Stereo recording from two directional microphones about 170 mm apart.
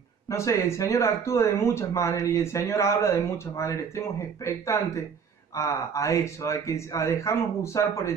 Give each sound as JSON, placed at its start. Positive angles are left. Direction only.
{"t": 0.3, "sound": "speech", "side_deg": 15}